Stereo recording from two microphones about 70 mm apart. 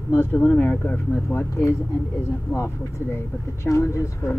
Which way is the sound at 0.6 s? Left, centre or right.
Left.